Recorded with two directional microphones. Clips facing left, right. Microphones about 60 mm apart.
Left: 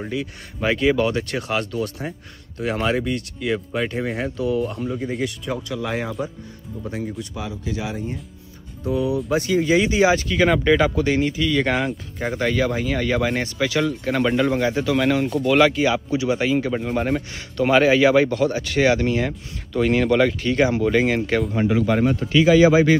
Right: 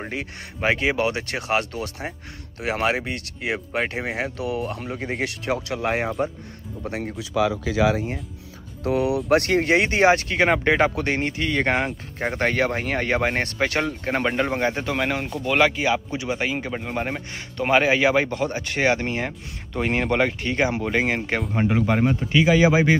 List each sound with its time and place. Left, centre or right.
0.1 s speech: right
5.0 s speech: right
5.8 s speech: right
8.8 s speech: right
9.3 s speech: right
12.4 s speech: right
15.0 s speech: centre
17.6 s speech: right